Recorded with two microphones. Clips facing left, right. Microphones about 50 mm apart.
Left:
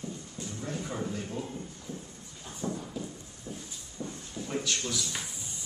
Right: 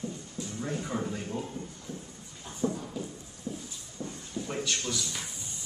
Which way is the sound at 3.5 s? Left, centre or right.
Left.